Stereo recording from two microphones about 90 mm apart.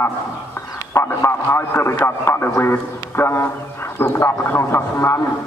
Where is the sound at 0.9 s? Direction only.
30° left (ahead or behind).